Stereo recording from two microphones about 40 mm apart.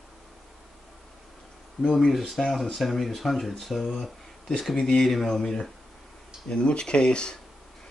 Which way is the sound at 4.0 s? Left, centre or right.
Centre.